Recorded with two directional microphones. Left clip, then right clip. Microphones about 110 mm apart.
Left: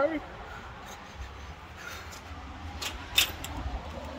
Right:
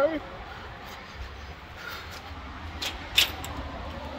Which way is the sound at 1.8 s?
65° left (ahead or behind).